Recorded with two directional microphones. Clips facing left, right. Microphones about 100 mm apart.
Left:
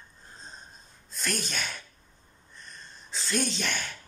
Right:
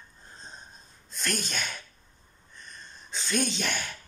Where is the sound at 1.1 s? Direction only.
Centre (ahead or behind).